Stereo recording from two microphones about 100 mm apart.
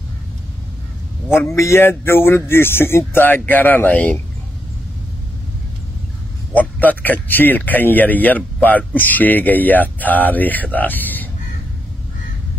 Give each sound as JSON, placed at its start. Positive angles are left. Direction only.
{"t": 1.5, "sound": "speech", "side_deg": 25}
{"t": 6.5, "sound": "speech", "side_deg": 15}